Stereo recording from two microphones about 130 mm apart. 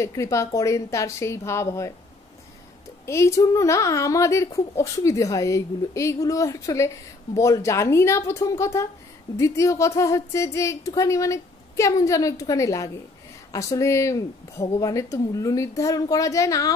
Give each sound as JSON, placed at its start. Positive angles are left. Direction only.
{"t": 0.0, "sound": "speech", "side_deg": 25}
{"t": 3.1, "sound": "speech", "side_deg": 20}